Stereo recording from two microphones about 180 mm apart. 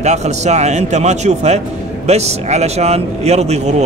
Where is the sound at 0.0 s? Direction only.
40° right (ahead or behind).